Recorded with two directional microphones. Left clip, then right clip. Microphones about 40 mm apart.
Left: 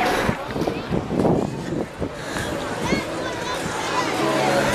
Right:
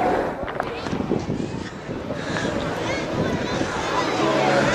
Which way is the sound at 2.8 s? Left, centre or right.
Left.